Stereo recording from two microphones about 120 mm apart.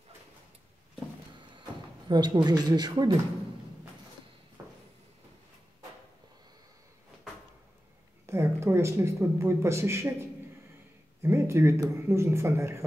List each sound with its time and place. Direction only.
2.0 s speech: 35° right (ahead or behind)
4.6 s a sound: 20° right (ahead or behind)
8.3 s speech: 20° right (ahead or behind)
11.2 s speech: 20° right (ahead or behind)